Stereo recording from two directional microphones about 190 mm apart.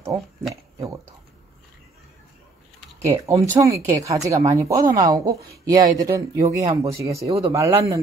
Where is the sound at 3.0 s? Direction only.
15° right (ahead or behind).